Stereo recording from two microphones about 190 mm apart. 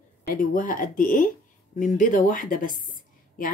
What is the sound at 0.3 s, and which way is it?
Speech, 45° left (ahead or behind).